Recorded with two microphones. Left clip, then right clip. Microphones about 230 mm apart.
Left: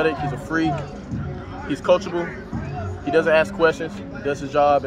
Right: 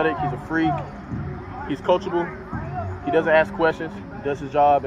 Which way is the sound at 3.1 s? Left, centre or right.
Centre.